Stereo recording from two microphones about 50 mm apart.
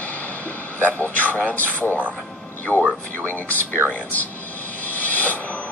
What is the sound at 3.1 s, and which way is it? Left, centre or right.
Speech, left.